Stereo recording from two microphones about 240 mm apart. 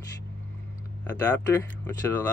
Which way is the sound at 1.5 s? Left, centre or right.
Centre.